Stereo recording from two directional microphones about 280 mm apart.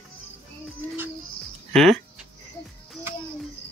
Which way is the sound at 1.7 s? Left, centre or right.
Centre.